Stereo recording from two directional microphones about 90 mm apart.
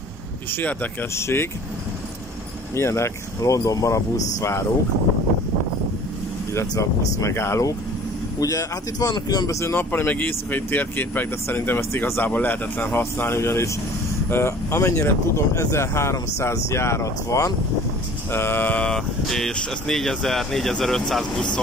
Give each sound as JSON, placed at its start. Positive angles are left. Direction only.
{"t": 0.5, "sound": "speech", "side_deg": 25}
{"t": 2.7, "sound": "speech", "side_deg": 30}
{"t": 6.7, "sound": "speech", "side_deg": 35}
{"t": 9.1, "sound": "speech", "side_deg": 50}
{"t": 9.5, "sound": "speech", "side_deg": 30}
{"t": 18.3, "sound": "speech", "side_deg": 25}
{"t": 18.9, "sound": "speech", "side_deg": 5}